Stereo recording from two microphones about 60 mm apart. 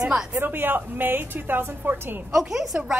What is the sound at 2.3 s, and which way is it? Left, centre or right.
Speech, centre.